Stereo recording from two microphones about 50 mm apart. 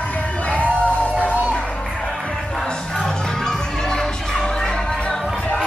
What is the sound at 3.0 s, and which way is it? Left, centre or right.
Music, centre.